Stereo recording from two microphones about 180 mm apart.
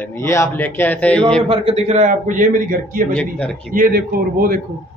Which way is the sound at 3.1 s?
5° left (ahead or behind).